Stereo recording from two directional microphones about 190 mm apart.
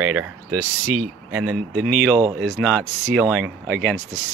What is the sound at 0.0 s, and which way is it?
Speech, 10° right (ahead or behind).